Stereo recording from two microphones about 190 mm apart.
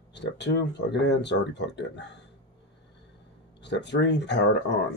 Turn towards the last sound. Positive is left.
turn(degrees=65)  # may be behind; listen again after turning